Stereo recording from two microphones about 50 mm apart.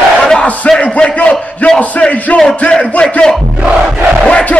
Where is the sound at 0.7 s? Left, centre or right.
Left.